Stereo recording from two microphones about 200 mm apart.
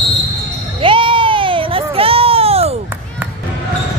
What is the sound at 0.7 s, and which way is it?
Baby cry, 25° right (ahead or behind).